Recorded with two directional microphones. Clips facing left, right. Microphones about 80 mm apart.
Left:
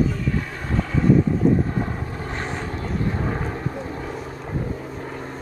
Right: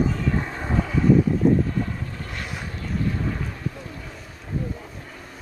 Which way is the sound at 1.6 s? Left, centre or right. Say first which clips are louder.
Left 2 dB; left.